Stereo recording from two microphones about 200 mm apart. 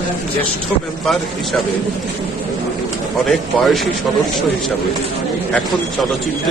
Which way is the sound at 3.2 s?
Centre (ahead or behind).